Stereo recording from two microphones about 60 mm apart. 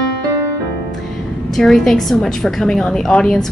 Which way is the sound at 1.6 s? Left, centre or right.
Centre.